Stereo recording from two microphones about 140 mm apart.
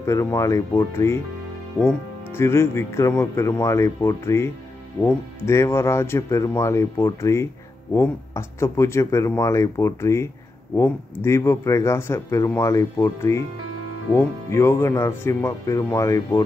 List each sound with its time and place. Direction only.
0.0 s speech: 20° left (ahead or behind)